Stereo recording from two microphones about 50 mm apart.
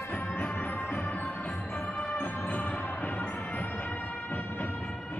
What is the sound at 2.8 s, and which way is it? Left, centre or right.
Music, left.